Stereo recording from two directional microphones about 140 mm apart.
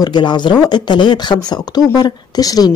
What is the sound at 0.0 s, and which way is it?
A woman's voice, 30° left (ahead or behind).